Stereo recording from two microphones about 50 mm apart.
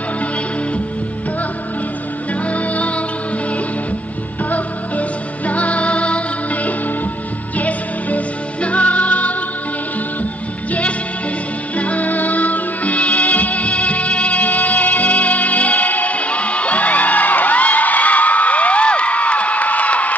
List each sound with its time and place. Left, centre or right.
2.5 s music: left
5.5 s music: left
11.7 s music: left